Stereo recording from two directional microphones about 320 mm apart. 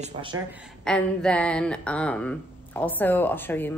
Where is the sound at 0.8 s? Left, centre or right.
Centre.